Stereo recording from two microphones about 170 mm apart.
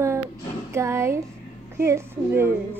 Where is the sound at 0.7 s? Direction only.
15° right (ahead or behind).